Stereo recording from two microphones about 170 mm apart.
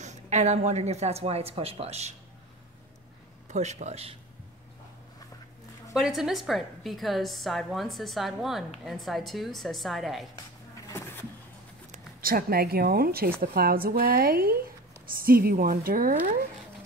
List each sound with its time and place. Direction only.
0.0 s a woman's voice: 45° right (ahead or behind)
3.4 s a woman's voice: 45° right (ahead or behind)
5.9 s a woman's voice: 5° right (ahead or behind)
11.9 s a woman's voice: 55° right (ahead or behind)